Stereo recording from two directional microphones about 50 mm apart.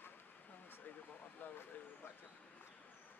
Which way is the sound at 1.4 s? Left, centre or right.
Left.